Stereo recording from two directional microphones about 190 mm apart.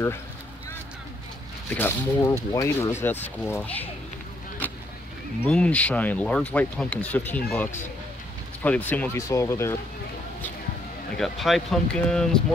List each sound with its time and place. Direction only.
1.7 s speech: 10° left (ahead or behind)
5.4 s speech: 5° left (ahead or behind)
8.6 s speech: 10° left (ahead or behind)
11.1 s speech: centre (ahead or behind)